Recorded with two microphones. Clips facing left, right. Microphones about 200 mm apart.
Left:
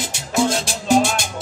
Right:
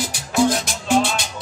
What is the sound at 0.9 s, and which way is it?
Music, 45° left (ahead or behind).